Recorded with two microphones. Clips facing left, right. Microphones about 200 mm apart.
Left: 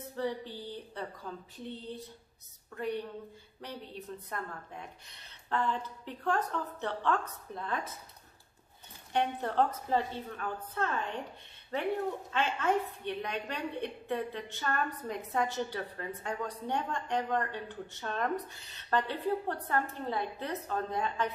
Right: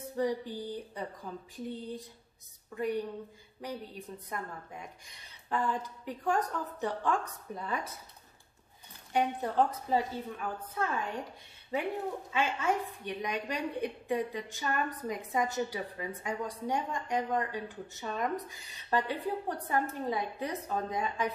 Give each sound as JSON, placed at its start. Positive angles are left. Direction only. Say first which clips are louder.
{"t": 0.1, "sound": "a woman's voice", "louder": "right 4 dB", "side_deg": -15}
{"t": 2.7, "sound": "a woman's voice", "louder": "right 3 dB", "side_deg": -10}
{"t": 9.1, "sound": "a woman's voice", "louder": "right 1 dB", "side_deg": -10}
{"t": 12.3, "sound": "a woman's voice", "louder": "right 1 dB", "side_deg": -10}